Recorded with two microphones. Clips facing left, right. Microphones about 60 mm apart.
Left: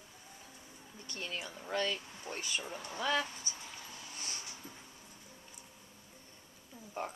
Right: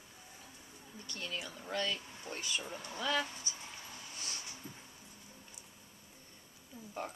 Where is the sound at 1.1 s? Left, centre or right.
Centre.